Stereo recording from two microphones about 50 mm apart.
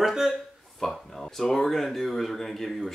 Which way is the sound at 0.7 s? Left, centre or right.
Centre.